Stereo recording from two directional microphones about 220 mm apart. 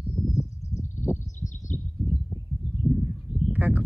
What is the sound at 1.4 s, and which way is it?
Bird, 35° left (ahead or behind).